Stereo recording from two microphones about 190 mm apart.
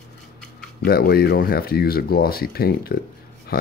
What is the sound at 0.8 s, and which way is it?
Speech, 55° left (ahead or behind).